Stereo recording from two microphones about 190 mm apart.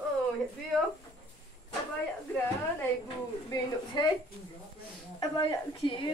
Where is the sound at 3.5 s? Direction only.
20° left (ahead or behind).